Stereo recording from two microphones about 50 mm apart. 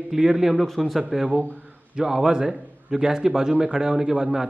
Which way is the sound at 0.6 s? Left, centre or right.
Centre.